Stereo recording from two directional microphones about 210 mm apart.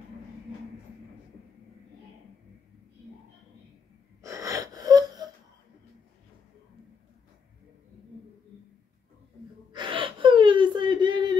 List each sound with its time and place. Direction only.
4.2 s wheeze: 15° right (ahead or behind)
9.7 s gasp: 20° right (ahead or behind)